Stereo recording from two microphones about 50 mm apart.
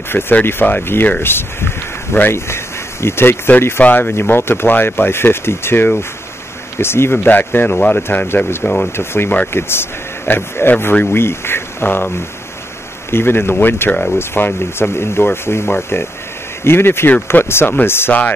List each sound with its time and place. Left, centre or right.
0.1 s speech: left
2.3 s speech: left
7.7 s speech: left
8.1 s speech: left
8.9 s speech: left
13.1 s speech: left